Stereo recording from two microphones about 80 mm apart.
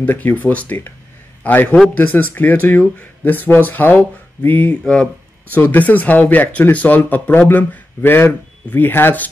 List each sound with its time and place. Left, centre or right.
0.0 s speech: left